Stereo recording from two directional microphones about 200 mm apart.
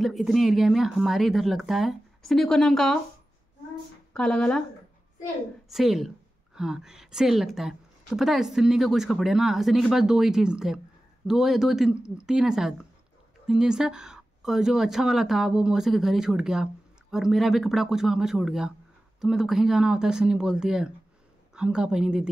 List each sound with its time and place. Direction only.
0.0 s a woman's voice: centre (ahead or behind)
4.1 s a woman's voice: 5° left (ahead or behind)
5.7 s a woman's voice: centre (ahead or behind)